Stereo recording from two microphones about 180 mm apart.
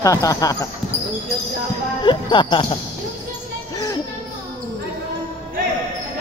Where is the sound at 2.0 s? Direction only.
25° left (ahead or behind).